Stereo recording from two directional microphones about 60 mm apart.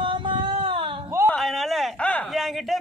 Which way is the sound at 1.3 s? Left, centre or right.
Centre.